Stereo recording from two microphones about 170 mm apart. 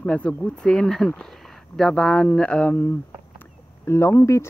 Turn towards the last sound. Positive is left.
turn(degrees=15)  # may be behind; listen again after turning